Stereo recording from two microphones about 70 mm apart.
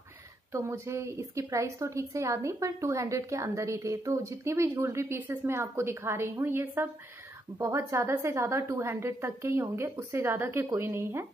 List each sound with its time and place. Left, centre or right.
0.5 s a woman's voice: right
7.5 s a woman's voice: right